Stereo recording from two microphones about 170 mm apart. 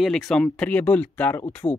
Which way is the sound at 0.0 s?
Centre (ahead or behind).